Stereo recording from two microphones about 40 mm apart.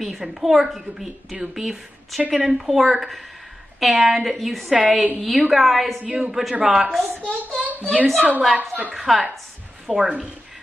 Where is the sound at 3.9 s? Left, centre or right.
Centre.